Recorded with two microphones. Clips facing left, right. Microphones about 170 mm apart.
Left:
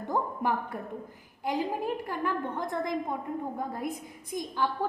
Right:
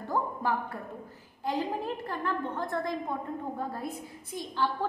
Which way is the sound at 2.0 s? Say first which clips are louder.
Left 1 dB; 10° left (ahead or behind).